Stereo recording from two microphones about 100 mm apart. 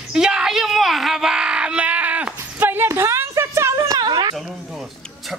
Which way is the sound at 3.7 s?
40° right (ahead or behind).